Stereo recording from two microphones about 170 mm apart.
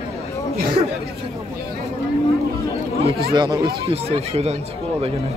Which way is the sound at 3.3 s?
25° right (ahead or behind).